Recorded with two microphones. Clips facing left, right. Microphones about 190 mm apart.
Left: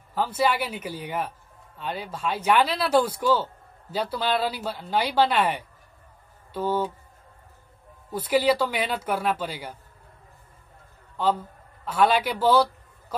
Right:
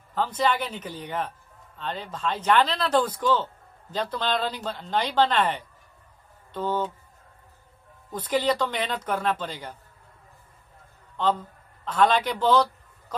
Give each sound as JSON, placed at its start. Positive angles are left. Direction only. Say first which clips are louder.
{"t": 0.1, "sound": "speech", "louder": "left 1 dB", "side_deg": 10}
{"t": 8.1, "sound": "speech", "louder": "left 3 dB", "side_deg": 10}
{"t": 11.1, "sound": "a man's voice", "louder": "left 1 dB", "side_deg": 10}